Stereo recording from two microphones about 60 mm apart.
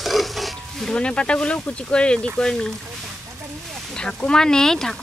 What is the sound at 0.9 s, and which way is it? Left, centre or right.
Speech, centre.